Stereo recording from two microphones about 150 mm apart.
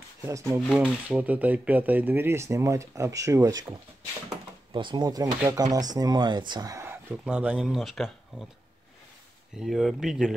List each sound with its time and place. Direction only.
0.2 s speech: 20° right (ahead or behind)
0.6 s speech: 5° right (ahead or behind); by 3.6 s 20° right (ahead or behind)
4.7 s speech: 30° right (ahead or behind); by 8.5 s centre (ahead or behind)
9.6 s speech: centre (ahead or behind)